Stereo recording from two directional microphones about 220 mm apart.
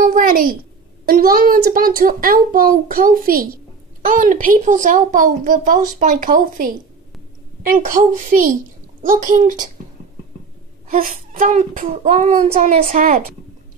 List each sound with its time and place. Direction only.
0.0 s a sound: 40° right (ahead or behind)
1.0 s speech: 40° right (ahead or behind)
10.9 s speech: 40° right (ahead or behind)